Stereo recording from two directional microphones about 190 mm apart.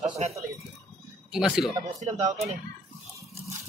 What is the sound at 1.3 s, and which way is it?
Speech, centre (ahead or behind).